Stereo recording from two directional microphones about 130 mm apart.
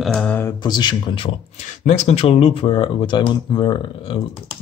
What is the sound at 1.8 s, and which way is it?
A man's voice, 60° left (ahead or behind).